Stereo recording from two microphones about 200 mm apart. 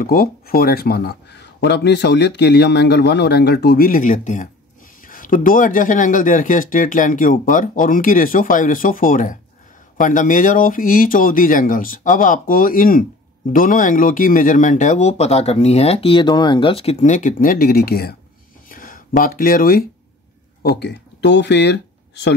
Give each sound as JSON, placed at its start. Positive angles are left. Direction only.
{"t": 0.0, "sound": "speech", "side_deg": 45}
{"t": 18.7, "sound": "a sound", "side_deg": 45}
{"t": 20.6, "sound": "speech", "side_deg": 55}